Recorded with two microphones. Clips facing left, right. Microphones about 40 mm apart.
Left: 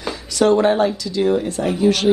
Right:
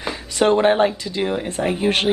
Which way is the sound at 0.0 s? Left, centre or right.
Right.